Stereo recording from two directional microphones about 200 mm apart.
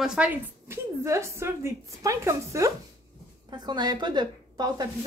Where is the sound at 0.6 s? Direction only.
15° right (ahead or behind).